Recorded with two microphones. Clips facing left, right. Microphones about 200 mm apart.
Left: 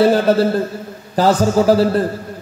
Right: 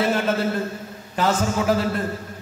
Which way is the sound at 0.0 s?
35° left (ahead or behind).